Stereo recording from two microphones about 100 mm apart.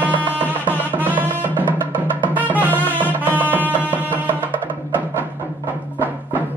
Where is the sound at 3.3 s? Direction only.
15° right (ahead or behind).